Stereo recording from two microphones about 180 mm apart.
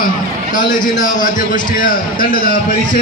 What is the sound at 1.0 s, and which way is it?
A man's voice, 45° left (ahead or behind).